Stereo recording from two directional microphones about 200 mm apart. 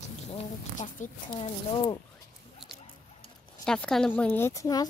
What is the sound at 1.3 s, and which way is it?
Speech, 25° left (ahead or behind).